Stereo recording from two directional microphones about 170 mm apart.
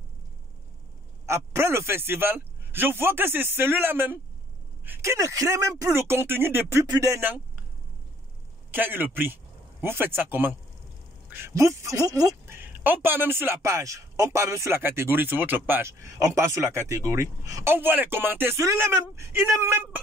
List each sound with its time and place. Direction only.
1.2 s speech: 15° right (ahead or behind)
8.7 s speech: 10° right (ahead or behind)